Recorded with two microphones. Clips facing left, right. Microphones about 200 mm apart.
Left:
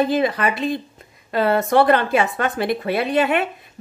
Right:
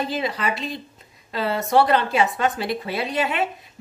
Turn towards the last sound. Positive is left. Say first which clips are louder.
# left 5 dB
turn(degrees=55)  # may be behind; listen again after turning